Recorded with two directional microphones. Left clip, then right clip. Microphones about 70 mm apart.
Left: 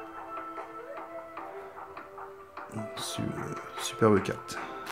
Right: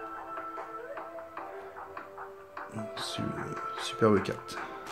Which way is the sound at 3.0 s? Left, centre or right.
Left.